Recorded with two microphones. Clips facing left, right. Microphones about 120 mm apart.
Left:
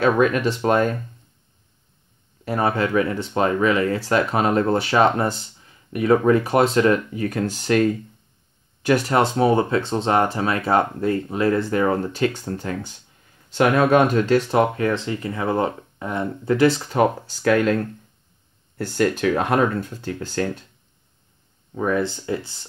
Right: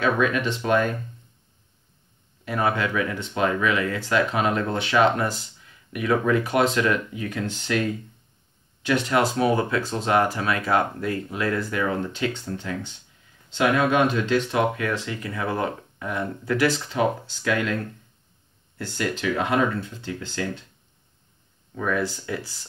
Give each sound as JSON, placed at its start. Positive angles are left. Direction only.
{"t": 0.0, "sound": "speech", "side_deg": 40}
{"t": 2.4, "sound": "speech", "side_deg": 35}
{"t": 8.8, "sound": "speech", "side_deg": 40}
{"t": 9.2, "sound": "speech", "side_deg": 30}
{"t": 11.8, "sound": "speech", "side_deg": 45}
{"t": 16.9, "sound": "speech", "side_deg": 45}
{"t": 18.8, "sound": "speech", "side_deg": 50}
{"t": 21.7, "sound": "speech", "side_deg": 25}